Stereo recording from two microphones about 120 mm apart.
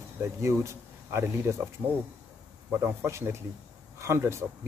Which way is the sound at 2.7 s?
20° right (ahead or behind).